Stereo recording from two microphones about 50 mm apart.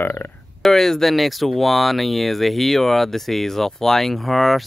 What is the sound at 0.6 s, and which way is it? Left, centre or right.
Speech, centre.